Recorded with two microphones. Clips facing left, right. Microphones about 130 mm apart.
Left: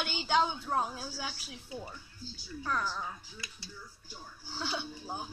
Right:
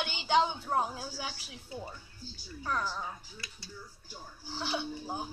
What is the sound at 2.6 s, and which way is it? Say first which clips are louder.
Speech: even; 30° right (ahead or behind).